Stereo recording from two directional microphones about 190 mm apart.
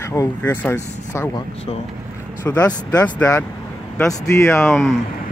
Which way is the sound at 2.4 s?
10° left (ahead or behind).